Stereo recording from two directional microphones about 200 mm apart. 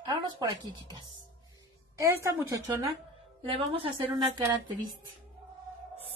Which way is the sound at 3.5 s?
25° right (ahead or behind).